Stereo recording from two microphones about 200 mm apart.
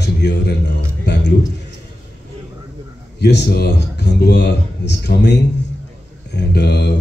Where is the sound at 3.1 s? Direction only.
55° left (ahead or behind).